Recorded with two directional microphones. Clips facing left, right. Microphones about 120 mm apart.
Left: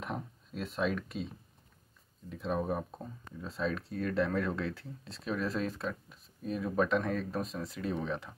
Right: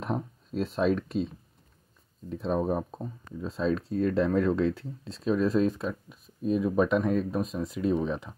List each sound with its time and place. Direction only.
0.0 s speech: 35° right (ahead or behind)
2.2 s speech: 35° right (ahead or behind); by 8.4 s 20° right (ahead or behind)